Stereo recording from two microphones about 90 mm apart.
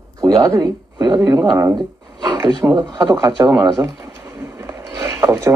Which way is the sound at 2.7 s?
45° right (ahead or behind).